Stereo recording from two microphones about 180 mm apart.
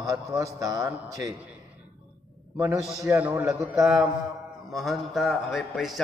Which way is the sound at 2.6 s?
15° right (ahead or behind).